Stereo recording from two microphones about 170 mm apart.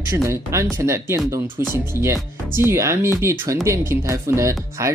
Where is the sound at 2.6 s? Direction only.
15° right (ahead or behind).